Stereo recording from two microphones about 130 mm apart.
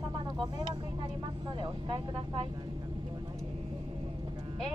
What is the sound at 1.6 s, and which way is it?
Speech, 40° right (ahead or behind).